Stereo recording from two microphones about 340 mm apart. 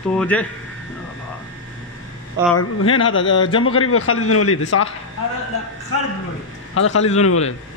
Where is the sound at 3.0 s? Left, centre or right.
Left.